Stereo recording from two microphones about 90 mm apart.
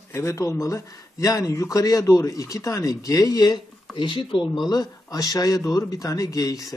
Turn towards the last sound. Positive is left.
turn(degrees=40)  # may be behind; listen again after turning